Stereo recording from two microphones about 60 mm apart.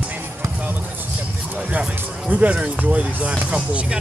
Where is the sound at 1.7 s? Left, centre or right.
Right.